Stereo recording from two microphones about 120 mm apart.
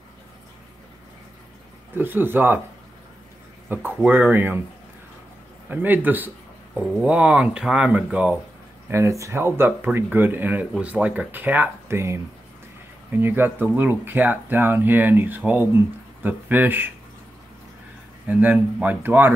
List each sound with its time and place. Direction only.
2.0 s speech: 15° right (ahead or behind)
3.6 s speech: 15° right (ahead or behind)
5.7 s speech: 15° right (ahead or behind)
8.9 s speech: 25° right (ahead or behind)
18.2 s speech: 15° right (ahead or behind)